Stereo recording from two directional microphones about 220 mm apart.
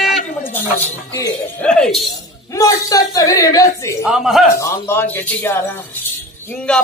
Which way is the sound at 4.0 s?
Centre (ahead or behind).